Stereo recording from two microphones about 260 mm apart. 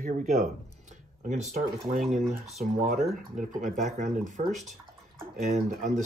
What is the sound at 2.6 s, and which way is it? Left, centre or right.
Speech, right.